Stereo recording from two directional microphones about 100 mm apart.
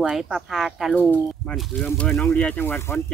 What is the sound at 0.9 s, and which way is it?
Speech, 15° left (ahead or behind).